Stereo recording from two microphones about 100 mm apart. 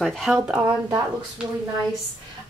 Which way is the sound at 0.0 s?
Centre (ahead or behind).